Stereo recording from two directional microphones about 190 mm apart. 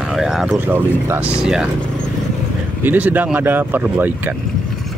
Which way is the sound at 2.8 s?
10° right (ahead or behind).